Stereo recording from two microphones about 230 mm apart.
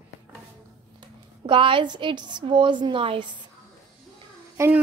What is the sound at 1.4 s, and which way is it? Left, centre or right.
A woman's voice, right.